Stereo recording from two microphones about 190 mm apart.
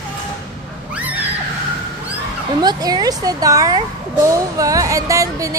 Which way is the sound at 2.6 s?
20° right (ahead or behind).